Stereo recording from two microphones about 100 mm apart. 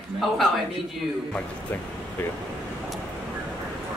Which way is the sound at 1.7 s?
15° left (ahead or behind).